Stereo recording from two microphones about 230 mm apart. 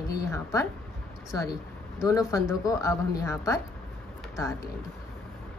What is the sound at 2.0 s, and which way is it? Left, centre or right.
Speech, centre.